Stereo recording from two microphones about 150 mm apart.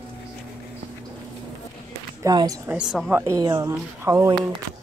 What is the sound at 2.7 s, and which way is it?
Speech, 5° right (ahead or behind).